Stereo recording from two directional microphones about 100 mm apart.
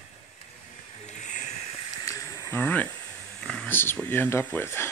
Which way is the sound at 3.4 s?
10° left (ahead or behind).